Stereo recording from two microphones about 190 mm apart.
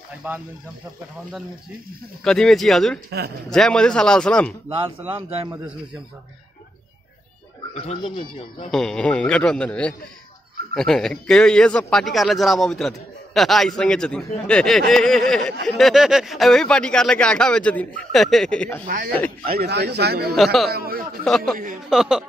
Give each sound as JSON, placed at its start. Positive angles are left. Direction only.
{"t": 0.2, "sound": "speech", "side_deg": -10}
{"t": 2.2, "sound": "speech", "side_deg": 5}
{"t": 4.6, "sound": "speech", "side_deg": -30}
{"t": 7.7, "sound": "speech", "side_deg": 35}
{"t": 8.7, "sound": "speech", "side_deg": 5}
{"t": 19.5, "sound": "speech", "side_deg": -55}
{"t": 20.3, "sound": "speech", "side_deg": 0}
{"t": 20.7, "sound": "speech", "side_deg": -50}
{"t": 21.8, "sound": "speech", "side_deg": -5}